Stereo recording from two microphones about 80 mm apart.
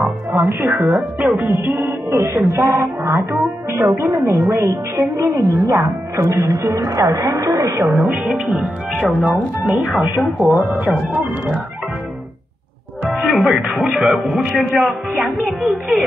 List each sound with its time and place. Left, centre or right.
0.0 s music: right
0.9 s speech: centre
1.4 s speech: right
2.4 s speech: right
4.3 s speech: right
8.3 s speech: centre
10.4 s speech: centre
13.0 s a man's voice: centre